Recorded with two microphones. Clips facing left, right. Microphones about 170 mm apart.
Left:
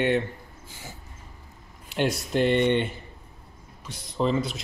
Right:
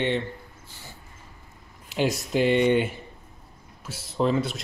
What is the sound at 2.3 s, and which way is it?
Speech, 5° right (ahead or behind).